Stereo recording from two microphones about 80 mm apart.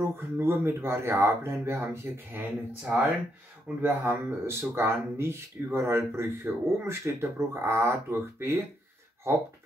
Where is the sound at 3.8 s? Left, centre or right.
Right.